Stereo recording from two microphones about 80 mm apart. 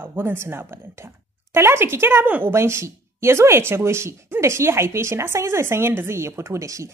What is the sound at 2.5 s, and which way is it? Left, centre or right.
Speech, right.